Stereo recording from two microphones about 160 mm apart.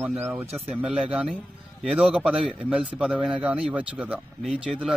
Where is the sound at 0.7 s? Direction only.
5° right (ahead or behind).